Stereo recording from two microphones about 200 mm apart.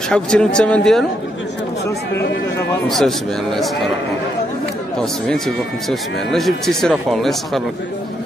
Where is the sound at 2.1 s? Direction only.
60° left (ahead or behind).